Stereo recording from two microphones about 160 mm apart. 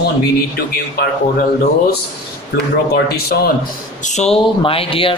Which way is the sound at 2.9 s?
80° left.